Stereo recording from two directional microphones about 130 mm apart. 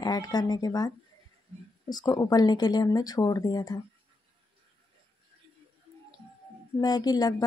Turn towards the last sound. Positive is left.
turn(degrees=30)  # may be behind; listen again after turning